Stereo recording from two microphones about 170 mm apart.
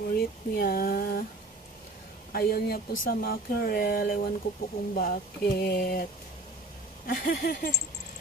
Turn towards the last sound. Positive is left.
turn(degrees=60)  # may be behind; listen again after turning